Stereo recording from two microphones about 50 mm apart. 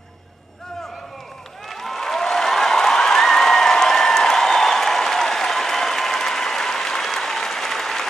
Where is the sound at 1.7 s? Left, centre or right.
Centre.